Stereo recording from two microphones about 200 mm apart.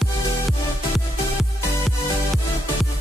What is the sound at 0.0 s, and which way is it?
Music, centre (ahead or behind).